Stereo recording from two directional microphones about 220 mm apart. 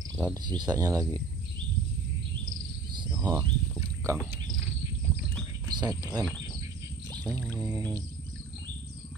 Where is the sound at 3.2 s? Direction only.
15° right (ahead or behind).